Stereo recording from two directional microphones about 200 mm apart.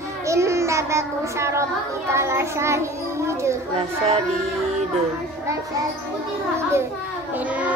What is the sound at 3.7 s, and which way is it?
Speech, 30° right (ahead or behind).